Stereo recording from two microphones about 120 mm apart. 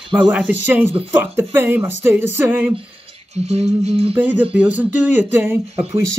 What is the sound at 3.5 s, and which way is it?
Music, 60° right (ahead or behind).